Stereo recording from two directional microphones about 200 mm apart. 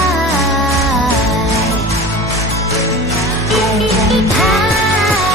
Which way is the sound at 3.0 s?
15° right (ahead or behind).